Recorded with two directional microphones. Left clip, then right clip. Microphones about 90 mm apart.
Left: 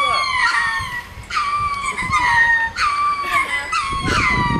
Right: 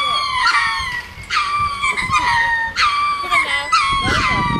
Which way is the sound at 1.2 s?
10° right (ahead or behind).